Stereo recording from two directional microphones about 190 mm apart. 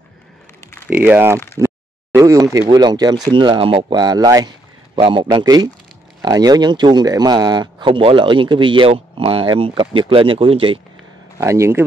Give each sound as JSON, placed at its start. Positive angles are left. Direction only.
{"t": 0.8, "sound": "speech", "side_deg": -10}
{"t": 11.3, "sound": "speech", "side_deg": -15}